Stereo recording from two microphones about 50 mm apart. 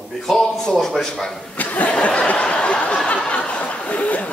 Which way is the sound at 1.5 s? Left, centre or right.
Left.